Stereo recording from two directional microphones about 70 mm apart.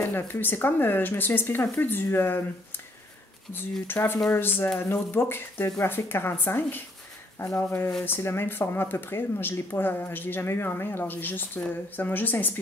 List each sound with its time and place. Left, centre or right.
0.0 s speech: left
3.8 s speech: left